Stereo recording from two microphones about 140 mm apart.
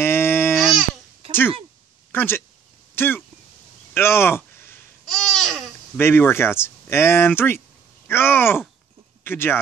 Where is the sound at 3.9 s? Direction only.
15° left (ahead or behind).